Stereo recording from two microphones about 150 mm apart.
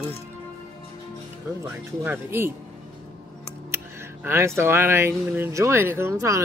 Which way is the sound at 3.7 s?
15° right (ahead or behind).